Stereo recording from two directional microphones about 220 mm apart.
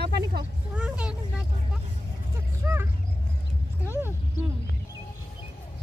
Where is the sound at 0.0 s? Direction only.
45° right (ahead or behind).